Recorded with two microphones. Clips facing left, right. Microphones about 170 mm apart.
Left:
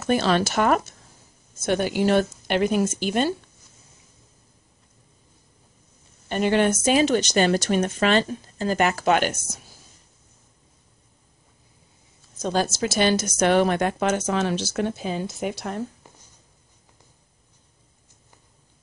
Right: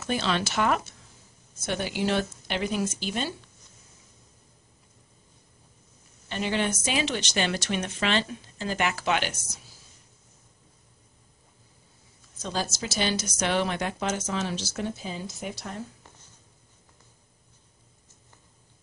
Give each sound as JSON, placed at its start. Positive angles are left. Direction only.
{"t": 0.0, "sound": "speech", "side_deg": 50}
{"t": 6.2, "sound": "speech", "side_deg": 50}
{"t": 12.4, "sound": "a woman's voice", "side_deg": 50}